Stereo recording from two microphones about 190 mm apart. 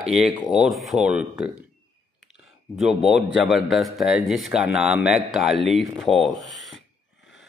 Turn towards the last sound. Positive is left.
turn(degrees=0)  # may be behind; listen again after turning